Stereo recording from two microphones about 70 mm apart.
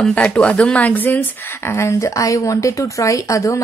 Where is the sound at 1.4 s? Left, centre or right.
Left.